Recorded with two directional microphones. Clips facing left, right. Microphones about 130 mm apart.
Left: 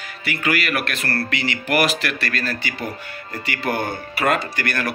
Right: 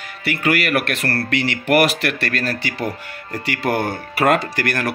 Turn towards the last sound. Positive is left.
turn(degrees=-75)  # may be behind; listen again after turning